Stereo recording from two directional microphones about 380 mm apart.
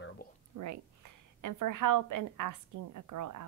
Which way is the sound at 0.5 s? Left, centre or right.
Right.